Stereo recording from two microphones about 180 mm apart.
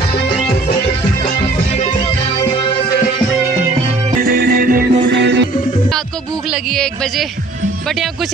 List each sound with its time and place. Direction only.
0.1 s music: 30° left (ahead or behind)
2.3 s music: 35° left (ahead or behind)
4.2 s music: 60° right (ahead or behind)
6.5 s music: 5° left (ahead or behind)